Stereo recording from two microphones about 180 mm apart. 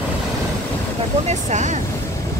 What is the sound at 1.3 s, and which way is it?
Speech, 40° right (ahead or behind).